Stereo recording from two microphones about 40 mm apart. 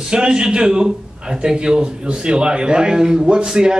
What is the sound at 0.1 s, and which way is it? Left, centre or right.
A man's voice, centre.